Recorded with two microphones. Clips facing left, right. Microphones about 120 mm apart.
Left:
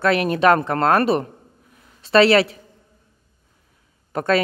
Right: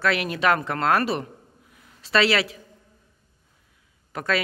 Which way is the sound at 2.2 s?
30° left (ahead or behind).